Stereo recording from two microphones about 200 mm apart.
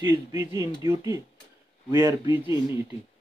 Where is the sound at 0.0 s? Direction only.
15° right (ahead or behind).